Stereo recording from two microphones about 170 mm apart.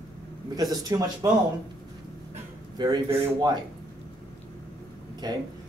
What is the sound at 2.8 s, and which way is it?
Speech, 25° right (ahead or behind).